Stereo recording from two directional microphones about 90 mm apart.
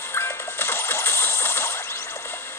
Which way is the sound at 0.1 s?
30° left (ahead or behind).